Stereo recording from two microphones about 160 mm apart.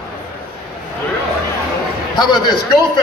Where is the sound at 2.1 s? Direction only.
30° left (ahead or behind).